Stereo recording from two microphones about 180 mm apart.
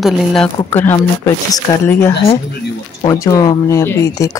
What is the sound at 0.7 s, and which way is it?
Speech, 15° left (ahead or behind).